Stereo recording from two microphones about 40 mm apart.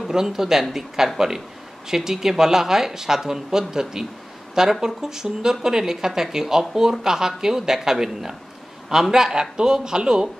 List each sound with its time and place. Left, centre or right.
0.1 s speech: centre